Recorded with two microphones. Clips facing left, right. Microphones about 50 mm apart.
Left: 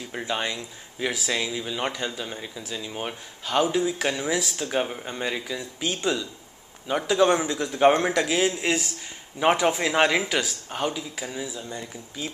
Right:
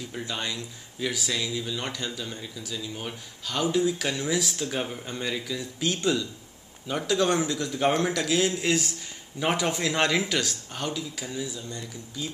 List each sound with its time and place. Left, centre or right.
0.3 s speech: left
2.4 s speech: left